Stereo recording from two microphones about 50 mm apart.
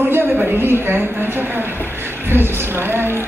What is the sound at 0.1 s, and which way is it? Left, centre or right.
A woman's voice, right.